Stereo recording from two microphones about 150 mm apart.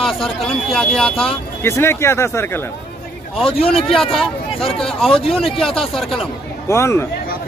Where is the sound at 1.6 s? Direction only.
15° left (ahead or behind).